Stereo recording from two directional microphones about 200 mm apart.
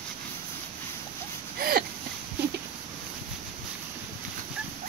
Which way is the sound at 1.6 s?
45° right (ahead or behind).